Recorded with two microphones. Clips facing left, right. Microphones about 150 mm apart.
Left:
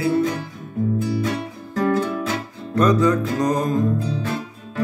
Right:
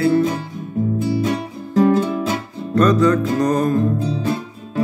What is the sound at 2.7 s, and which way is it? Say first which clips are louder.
Music: right 3 dB; 15° left (ahead or behind).